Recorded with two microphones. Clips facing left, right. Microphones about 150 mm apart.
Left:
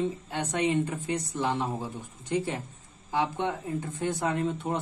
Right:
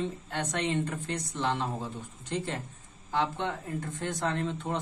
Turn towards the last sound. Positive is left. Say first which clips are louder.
# left 3 dB
turn(degrees=10)  # may be behind; listen again after turning